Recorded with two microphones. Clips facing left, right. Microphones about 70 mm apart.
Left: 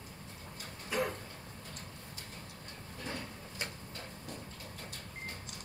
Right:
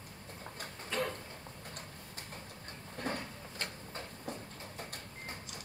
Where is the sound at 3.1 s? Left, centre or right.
Right.